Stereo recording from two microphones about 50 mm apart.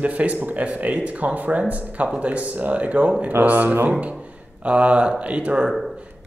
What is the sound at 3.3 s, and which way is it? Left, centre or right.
Speech, right.